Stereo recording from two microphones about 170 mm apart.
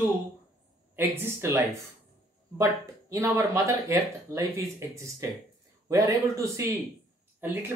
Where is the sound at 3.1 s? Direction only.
15° right (ahead or behind).